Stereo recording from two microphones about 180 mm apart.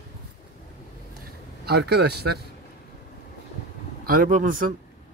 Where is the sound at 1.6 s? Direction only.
65° right (ahead or behind).